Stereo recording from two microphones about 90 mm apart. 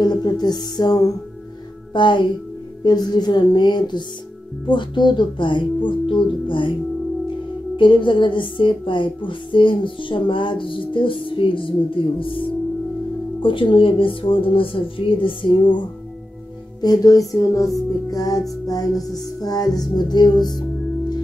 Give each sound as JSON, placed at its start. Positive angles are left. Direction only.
{"t": 0.0, "sound": "a woman's voice", "side_deg": 50}
{"t": 2.0, "sound": "speech", "side_deg": 60}
{"t": 2.8, "sound": "a woman's voice", "side_deg": 50}
{"t": 7.7, "sound": "speech", "side_deg": 65}
{"t": 16.8, "sound": "a woman's voice", "side_deg": 45}
{"t": 17.6, "sound": "music", "side_deg": 40}
{"t": 19.4, "sound": "a woman's voice", "side_deg": 45}